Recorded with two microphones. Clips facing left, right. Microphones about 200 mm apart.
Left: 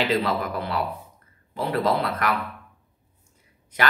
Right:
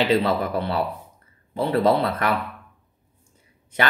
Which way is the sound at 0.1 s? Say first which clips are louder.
Right 4 dB; 30° right (ahead or behind).